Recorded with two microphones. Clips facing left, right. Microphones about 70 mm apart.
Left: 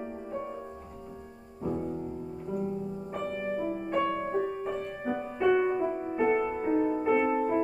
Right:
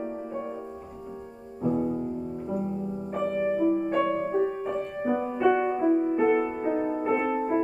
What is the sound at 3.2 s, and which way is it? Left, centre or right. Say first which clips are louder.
Music: right 8 dB; centre.